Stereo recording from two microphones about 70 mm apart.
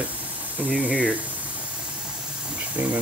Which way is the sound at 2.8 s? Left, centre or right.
Right.